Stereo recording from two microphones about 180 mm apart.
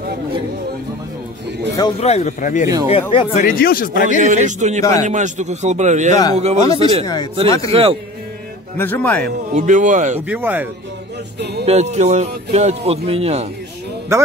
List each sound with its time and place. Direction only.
2.0 s speech: 35° left (ahead or behind)
2.6 s speech: 20° right (ahead or behind)
2.9 s speech: 30° left (ahead or behind)
3.4 s speech: 55° left (ahead or behind)
4.2 s speech: 40° right (ahead or behind)
7.4 s a man's voice: 20° left (ahead or behind)
7.7 s speech: 35° right (ahead or behind)
8.7 s speech: 10° left (ahead or behind)
9.5 s speech: 45° right (ahead or behind)
10.2 s speech: 10° right (ahead or behind)
11.6 s speech: 40° right (ahead or behind)